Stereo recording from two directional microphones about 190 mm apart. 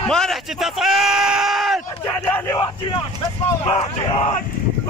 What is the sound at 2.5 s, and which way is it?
Speech, 25° left (ahead or behind).